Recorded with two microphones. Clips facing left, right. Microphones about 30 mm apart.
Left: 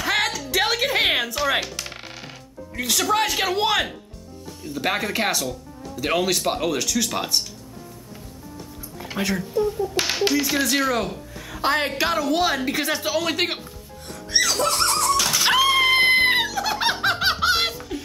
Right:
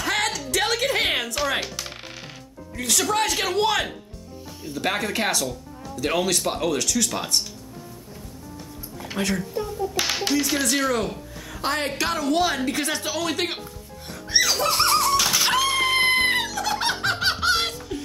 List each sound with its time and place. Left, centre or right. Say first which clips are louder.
0.0 s a sound: left 2 dB; centre
0.5 s music: left 1 dB; centre
2.8 s speech: left 2 dB; centre
9.0 s speech: even; centre
14.0 s music: even; centre
15.4 s music: left 4 dB; centre